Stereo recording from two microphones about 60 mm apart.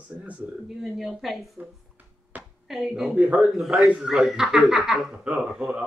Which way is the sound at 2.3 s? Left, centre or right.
Right.